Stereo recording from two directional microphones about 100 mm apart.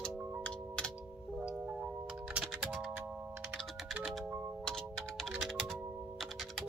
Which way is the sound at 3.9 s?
20° right (ahead or behind).